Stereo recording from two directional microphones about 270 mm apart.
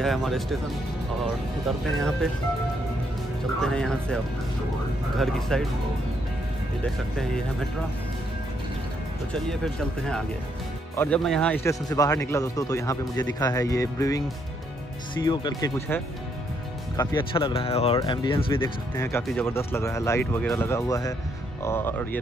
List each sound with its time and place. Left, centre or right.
0.0 s speech: centre
1.9 s speech: centre
3.6 s speech: centre
6.8 s speech: centre
11.0 s speech: centre
15.2 s speech: centre